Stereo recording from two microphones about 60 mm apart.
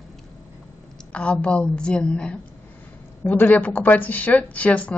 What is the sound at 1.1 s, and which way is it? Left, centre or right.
A man's voice, centre.